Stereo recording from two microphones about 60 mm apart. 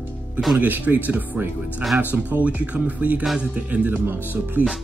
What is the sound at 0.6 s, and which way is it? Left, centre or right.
Speech, right.